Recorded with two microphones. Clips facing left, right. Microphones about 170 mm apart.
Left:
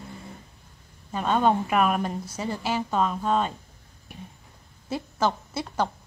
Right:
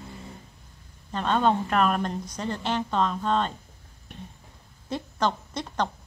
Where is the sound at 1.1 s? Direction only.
10° left (ahead or behind).